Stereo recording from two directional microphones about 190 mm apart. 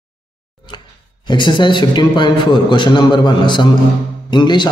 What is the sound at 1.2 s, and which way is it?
A man's voice, 25° left (ahead or behind).